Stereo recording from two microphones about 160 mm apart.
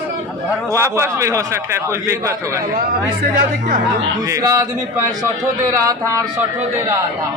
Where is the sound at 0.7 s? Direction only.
15° right (ahead or behind).